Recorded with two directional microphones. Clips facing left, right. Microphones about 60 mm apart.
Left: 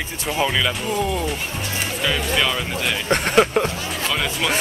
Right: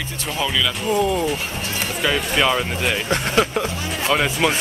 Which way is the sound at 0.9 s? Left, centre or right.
Centre.